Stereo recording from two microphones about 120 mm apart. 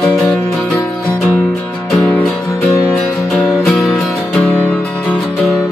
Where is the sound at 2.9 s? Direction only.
Centre (ahead or behind).